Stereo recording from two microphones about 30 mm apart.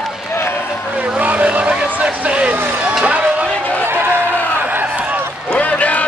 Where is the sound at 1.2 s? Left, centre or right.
Right.